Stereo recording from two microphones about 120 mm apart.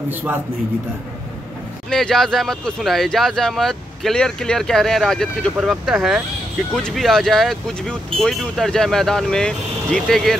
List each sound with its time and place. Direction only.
0.1 s a man's voice: 15° right (ahead or behind)
1.9 s speech: 5° left (ahead or behind)